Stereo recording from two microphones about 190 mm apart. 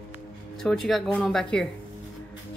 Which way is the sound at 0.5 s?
Centre (ahead or behind).